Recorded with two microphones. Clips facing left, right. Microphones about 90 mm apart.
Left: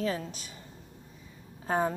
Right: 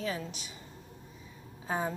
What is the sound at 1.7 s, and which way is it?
Speech, 50° left (ahead or behind).